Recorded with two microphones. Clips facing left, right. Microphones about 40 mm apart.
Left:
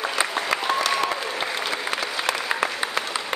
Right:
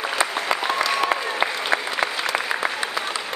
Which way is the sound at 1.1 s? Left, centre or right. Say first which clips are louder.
Right 5 dB; centre.